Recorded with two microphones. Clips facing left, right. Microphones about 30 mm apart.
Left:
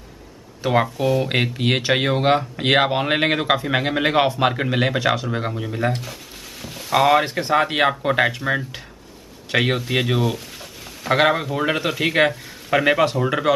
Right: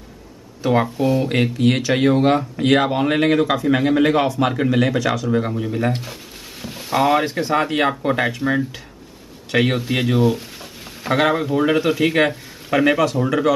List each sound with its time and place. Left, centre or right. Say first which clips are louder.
0.6 s speech: right 1 dB; centre
1.3 s speech: right 3 dB; centre
5.5 s speech: right 2 dB; centre
6.6 s a sound: right 3 dB; centre
6.9 s speech: left 1 dB; centre
10.3 s a sound: right 3 dB; centre
11.1 s speech: right 1 dB; centre